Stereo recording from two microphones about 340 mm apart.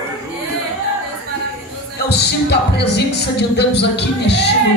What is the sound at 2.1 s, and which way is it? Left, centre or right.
Speech, left.